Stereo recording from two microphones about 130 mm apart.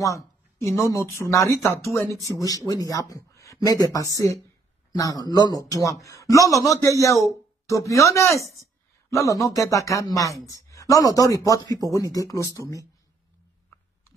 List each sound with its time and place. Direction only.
0.0 s a sound: 25° left (ahead or behind)
0.9 s speech: 20° left (ahead or behind)
2.0 s speech: 25° right (ahead or behind)
2.3 s speech: 25° left (ahead or behind)